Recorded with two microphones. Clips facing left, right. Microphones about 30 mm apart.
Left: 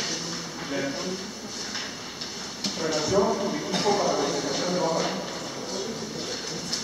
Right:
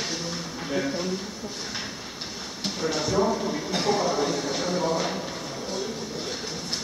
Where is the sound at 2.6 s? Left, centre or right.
Centre.